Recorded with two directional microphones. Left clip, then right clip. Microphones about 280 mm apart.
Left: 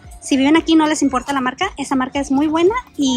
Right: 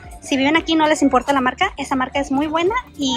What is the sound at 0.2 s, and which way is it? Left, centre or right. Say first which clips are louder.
A woman's voice: left 2 dB; centre.